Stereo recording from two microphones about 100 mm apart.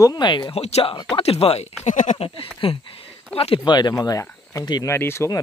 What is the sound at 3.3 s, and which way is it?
Speech, 70° left (ahead or behind).